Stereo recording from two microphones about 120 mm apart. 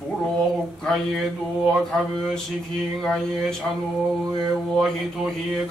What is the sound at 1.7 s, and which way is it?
Mantra, 5° left (ahead or behind).